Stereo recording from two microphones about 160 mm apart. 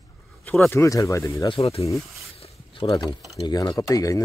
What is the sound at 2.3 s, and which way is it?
Zipper, 40° left (ahead or behind).